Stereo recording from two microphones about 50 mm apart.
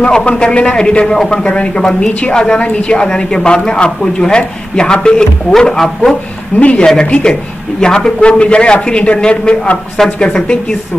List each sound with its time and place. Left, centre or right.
0.0 s a man's voice: left
6.6 s a man's voice: left
7.8 s a man's voice: centre